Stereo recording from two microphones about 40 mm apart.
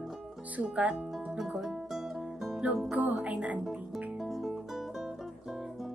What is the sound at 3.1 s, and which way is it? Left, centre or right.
Speech, right.